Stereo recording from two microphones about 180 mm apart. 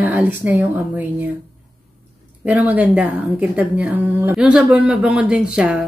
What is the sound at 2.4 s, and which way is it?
A woman's voice, 10° right (ahead or behind).